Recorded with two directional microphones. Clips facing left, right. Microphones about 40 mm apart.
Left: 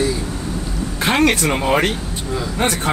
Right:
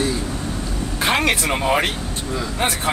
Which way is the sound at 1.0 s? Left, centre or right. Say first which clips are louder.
Left 3 dB; centre.